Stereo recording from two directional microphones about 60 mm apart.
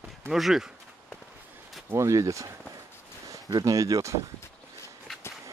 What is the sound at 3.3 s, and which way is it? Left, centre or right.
Speech, right.